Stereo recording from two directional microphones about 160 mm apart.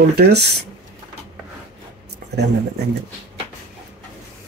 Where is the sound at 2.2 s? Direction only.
70° right (ahead or behind).